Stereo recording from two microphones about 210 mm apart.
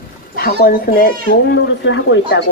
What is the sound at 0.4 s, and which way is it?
Speech, 45° left (ahead or behind).